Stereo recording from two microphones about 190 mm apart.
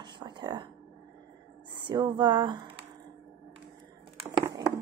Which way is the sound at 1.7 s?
25° right (ahead or behind).